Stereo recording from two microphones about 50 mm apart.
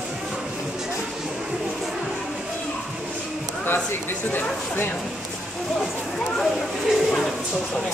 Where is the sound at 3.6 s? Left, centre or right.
Left.